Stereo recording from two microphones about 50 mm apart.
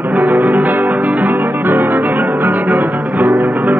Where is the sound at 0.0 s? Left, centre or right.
Right.